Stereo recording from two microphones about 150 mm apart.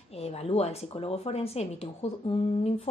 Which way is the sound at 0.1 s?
45° left (ahead or behind).